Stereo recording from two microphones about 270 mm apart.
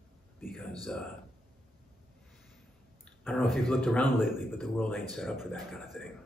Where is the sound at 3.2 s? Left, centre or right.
Centre.